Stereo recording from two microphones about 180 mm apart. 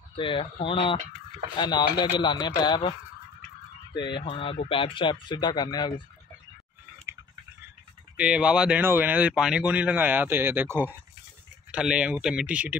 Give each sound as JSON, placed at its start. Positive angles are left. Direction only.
{"t": 0.1, "sound": "speech", "side_deg": 30}
{"t": 3.9, "sound": "speech", "side_deg": 25}
{"t": 8.2, "sound": "speech", "side_deg": -5}